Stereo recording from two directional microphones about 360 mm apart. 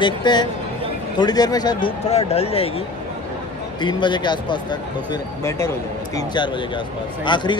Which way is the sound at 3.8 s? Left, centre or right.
Centre.